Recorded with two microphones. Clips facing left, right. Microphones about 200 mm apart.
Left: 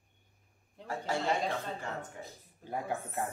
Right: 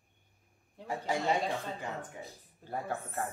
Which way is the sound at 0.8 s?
15° right (ahead or behind).